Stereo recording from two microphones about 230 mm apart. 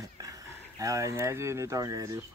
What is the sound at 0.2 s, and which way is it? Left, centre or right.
Speech, centre.